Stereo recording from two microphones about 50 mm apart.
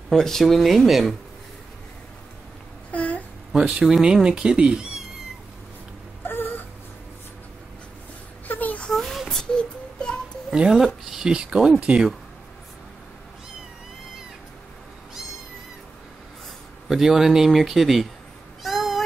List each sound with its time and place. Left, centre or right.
0.1 s speech: centre
2.9 s babbling: left
3.5 s speech: centre
6.2 s whimper: left
8.5 s a sound: left
9.3 s a sound: centre
10.5 s speech: centre
16.8 s speech: centre
18.6 s cat: centre